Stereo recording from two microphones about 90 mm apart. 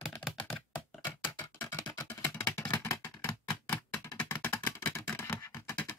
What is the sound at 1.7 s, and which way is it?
Music, 40° left (ahead or behind).